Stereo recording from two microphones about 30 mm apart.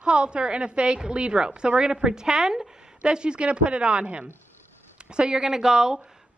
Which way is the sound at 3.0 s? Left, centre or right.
Right.